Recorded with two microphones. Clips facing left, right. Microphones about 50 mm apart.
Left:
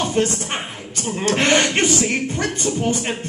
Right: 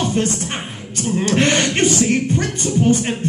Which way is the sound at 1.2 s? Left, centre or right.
Left.